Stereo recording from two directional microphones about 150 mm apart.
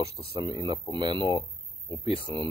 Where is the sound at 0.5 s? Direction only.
30° right (ahead or behind).